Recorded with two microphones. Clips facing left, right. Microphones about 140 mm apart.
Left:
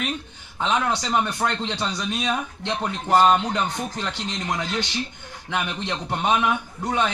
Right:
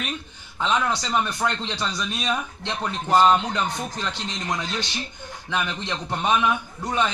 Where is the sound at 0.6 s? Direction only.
20° left (ahead or behind).